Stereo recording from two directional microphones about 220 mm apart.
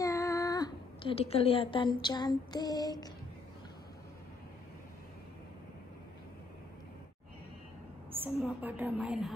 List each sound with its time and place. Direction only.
0.0 s speech: 15° left (ahead or behind)
8.2 s a woman's voice: 5° right (ahead or behind)